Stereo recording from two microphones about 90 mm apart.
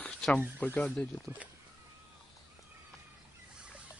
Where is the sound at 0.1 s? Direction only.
5° left (ahead or behind).